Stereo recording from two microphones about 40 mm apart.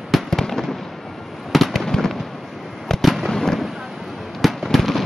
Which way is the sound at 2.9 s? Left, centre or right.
Centre.